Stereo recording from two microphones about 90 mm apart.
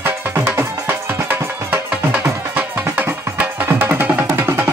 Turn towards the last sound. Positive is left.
turn(degrees=-25)  # may be behind; listen again after turning